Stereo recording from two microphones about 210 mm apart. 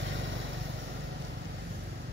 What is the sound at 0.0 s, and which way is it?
Vehicle, 60° right (ahead or behind).